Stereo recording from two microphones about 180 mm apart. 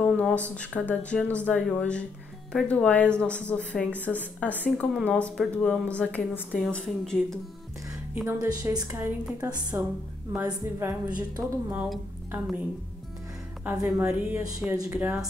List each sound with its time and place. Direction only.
0.0 s speech: 10° left (ahead or behind)
8.1 s a woman's voice: 10° right (ahead or behind)
11.7 s speech: 5° right (ahead or behind)
13.7 s a woman's voice: 15° right (ahead or behind)